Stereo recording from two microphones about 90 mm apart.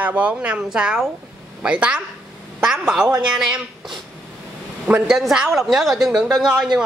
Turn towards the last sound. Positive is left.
turn(degrees=-5)  # may be behind; listen again after turning